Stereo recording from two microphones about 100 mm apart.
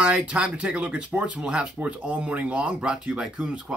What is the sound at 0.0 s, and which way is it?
Speech, 10° right (ahead or behind).